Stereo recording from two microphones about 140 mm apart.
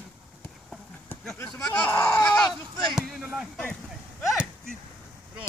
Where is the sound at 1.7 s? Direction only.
15° left (ahead or behind); by 4.7 s centre (ahead or behind).